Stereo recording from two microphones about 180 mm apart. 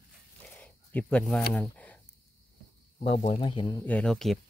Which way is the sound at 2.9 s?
35° left (ahead or behind).